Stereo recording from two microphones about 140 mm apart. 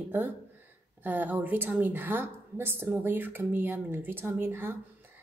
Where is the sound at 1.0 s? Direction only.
10° right (ahead or behind).